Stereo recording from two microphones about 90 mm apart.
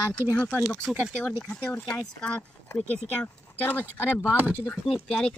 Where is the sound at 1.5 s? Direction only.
10° left (ahead or behind).